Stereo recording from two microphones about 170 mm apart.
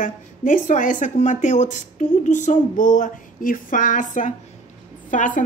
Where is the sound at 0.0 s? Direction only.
50° left (ahead or behind).